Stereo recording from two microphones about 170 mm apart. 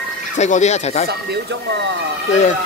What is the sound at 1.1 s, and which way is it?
Speech, 85° right.